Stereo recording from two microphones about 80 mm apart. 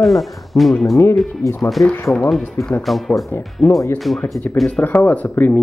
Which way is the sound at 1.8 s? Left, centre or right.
Left.